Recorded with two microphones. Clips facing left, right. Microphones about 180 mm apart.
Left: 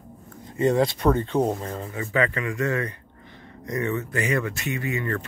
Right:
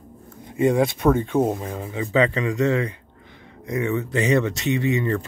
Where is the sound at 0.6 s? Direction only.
10° right (ahead or behind).